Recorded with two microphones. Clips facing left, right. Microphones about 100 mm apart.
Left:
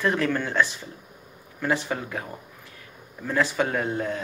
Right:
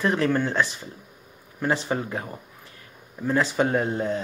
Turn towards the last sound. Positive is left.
turn(degrees=-30)  # may be behind; listen again after turning